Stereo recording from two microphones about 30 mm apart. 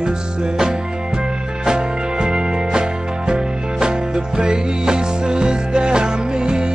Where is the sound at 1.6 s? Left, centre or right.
Right.